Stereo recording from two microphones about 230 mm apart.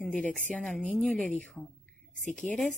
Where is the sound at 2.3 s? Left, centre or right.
Centre.